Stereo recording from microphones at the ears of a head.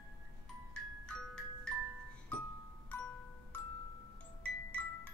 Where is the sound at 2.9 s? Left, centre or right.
Left.